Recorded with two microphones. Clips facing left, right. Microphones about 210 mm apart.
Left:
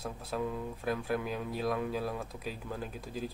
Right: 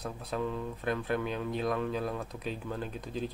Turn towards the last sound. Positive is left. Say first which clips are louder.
# right 2 dB
turn(degrees=5)  # may be behind; listen again after turning